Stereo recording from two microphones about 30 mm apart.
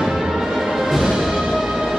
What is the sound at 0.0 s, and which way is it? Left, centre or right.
Music, centre.